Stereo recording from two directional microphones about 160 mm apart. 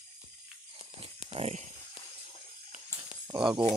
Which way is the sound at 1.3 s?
40° right (ahead or behind).